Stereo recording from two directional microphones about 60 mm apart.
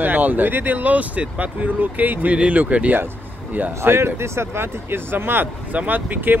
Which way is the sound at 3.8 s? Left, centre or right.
Right.